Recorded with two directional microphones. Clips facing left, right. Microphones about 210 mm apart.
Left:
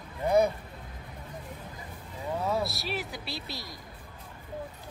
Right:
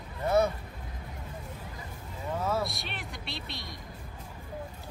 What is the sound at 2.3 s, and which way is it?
Vehicle, 15° left (ahead or behind).